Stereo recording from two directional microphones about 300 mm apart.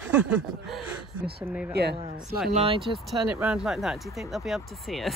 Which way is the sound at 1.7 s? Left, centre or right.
Right.